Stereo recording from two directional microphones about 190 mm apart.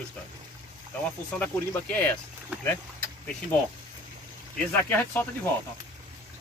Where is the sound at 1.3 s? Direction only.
10° left (ahead or behind).